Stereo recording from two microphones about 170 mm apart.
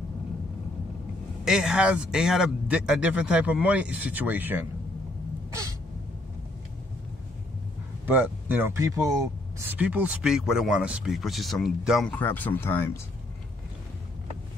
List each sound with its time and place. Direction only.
1.4 s a man's voice: 5° right (ahead or behind)
5.5 s gasp: 20° right (ahead or behind)
8.1 s a man's voice: 10° right (ahead or behind)
12.1 s speech: 10° left (ahead or behind)